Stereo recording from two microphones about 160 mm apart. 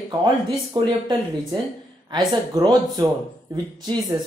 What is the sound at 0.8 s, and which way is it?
Speech, 25° right (ahead or behind).